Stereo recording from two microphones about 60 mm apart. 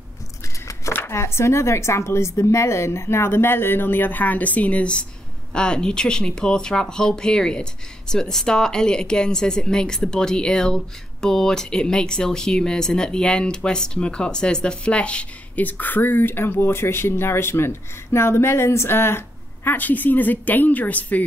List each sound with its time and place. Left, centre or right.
0.9 s a woman's voice: left